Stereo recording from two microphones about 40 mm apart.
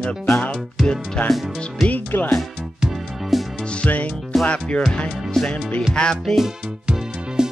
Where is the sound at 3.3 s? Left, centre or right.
Centre.